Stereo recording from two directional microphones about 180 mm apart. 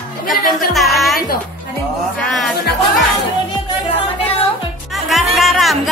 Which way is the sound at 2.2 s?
5° left (ahead or behind).